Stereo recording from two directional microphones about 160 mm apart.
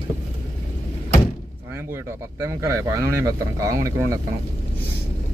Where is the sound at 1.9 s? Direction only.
15° right (ahead or behind).